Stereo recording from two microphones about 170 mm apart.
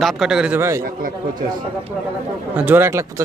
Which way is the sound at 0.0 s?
5° right (ahead or behind).